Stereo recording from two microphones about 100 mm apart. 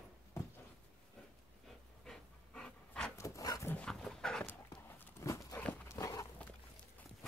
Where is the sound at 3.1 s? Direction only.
30° left (ahead or behind).